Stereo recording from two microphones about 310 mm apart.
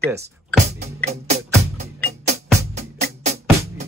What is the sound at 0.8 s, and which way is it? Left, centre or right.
Music, right.